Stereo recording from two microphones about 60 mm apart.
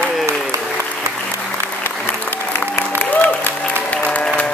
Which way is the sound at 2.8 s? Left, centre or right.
Left.